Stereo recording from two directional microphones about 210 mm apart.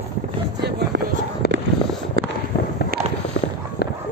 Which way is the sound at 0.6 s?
50° right (ahead or behind).